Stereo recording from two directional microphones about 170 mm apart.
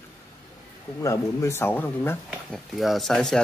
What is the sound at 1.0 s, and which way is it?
Speech, 15° left (ahead or behind).